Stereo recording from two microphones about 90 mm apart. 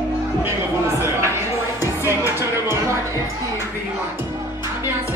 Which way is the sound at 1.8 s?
30° right (ahead or behind).